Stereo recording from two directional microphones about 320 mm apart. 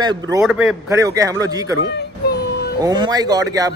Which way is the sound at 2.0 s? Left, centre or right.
Left.